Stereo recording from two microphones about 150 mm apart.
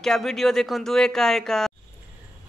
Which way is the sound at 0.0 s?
Centre (ahead or behind).